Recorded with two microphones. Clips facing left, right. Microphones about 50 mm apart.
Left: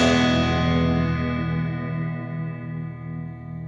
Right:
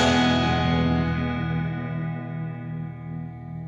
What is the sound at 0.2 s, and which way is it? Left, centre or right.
Music, centre.